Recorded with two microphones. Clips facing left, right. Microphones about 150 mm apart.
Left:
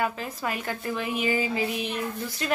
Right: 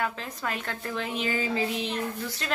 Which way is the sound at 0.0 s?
10° left (ahead or behind).